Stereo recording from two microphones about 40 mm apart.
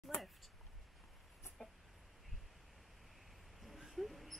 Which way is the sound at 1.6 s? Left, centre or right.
Centre.